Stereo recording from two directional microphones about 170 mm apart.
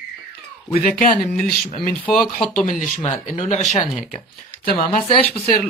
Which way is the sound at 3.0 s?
40° left (ahead or behind).